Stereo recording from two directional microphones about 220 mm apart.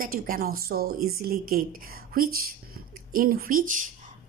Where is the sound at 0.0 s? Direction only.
40° right (ahead or behind).